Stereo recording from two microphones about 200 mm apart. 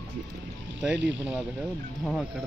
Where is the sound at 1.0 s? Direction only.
65° right (ahead or behind).